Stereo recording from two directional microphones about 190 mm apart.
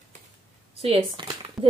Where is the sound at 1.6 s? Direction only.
Centre (ahead or behind).